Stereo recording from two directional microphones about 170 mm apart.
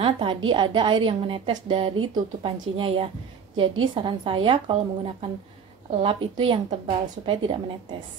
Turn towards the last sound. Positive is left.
turn(degrees=-30)  # may be behind; listen again after turning